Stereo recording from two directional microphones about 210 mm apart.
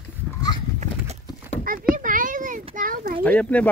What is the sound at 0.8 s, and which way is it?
Horse, 35° right (ahead or behind).